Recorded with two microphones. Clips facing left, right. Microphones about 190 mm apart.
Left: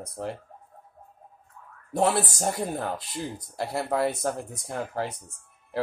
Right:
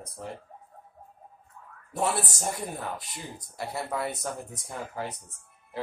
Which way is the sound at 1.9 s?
60° left (ahead or behind).